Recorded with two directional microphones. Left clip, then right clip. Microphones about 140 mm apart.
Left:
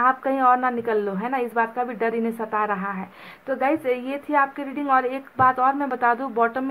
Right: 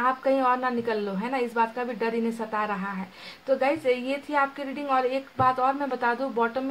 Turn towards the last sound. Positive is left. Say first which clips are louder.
# left 4 dB
turn(degrees=30)  # may be behind; listen again after turning